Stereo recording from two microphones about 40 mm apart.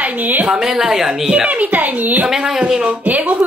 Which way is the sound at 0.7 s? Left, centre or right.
Centre.